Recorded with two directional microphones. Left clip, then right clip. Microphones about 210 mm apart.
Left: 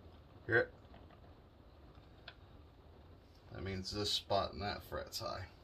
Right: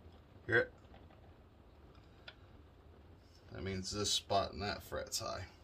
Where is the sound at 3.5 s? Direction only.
20° right (ahead or behind).